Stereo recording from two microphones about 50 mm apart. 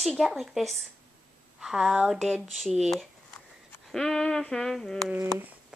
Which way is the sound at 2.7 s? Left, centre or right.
Centre.